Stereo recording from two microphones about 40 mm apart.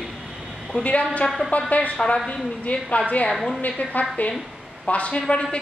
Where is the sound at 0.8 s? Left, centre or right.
Left.